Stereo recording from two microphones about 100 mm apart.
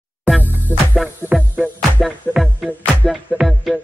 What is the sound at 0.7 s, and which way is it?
Music, 20° left (ahead or behind).